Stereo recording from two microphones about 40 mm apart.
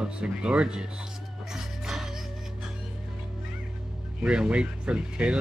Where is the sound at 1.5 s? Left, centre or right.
Centre.